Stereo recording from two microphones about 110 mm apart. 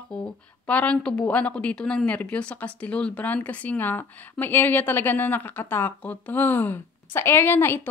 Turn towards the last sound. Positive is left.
turn(degrees=20)  # may be behind; listen again after turning